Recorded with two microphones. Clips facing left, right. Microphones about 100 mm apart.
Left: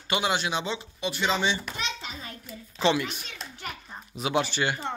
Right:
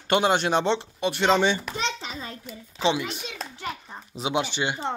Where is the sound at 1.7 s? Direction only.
35° right (ahead or behind).